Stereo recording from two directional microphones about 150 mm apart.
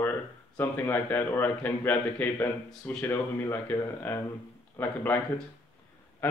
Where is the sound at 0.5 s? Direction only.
15° left (ahead or behind).